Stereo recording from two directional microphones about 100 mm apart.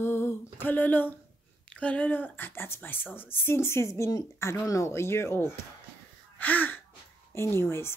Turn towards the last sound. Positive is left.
turn(degrees=25)  # may be behind; listen again after turning